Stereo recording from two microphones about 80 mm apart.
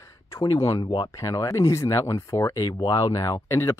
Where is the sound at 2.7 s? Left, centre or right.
Left.